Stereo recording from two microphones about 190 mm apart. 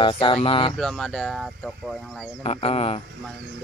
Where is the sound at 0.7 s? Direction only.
Centre (ahead or behind).